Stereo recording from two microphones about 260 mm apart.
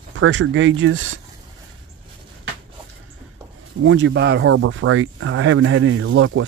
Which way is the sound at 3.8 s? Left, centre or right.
Right.